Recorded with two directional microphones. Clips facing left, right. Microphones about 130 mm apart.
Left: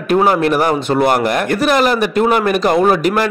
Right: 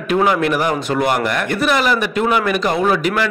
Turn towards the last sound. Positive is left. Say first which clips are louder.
# left 4 dB
turn(degrees=40)  # may be behind; listen again after turning